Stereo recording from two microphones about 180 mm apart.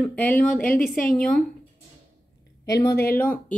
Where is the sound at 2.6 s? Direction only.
20° left (ahead or behind).